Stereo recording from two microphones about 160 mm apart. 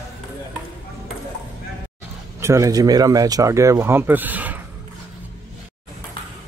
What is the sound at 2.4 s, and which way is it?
Speech, 20° right (ahead or behind).